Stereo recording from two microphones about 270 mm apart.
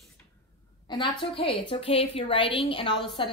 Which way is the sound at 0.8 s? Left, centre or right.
Centre.